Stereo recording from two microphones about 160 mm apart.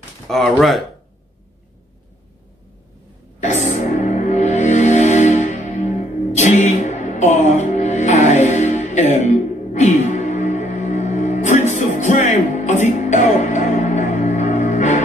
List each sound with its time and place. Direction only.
0.3 s speech: centre (ahead or behind)
4.0 s music: 45° left (ahead or behind)